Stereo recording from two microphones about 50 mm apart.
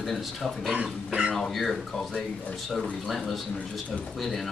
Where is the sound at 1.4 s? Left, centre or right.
Centre.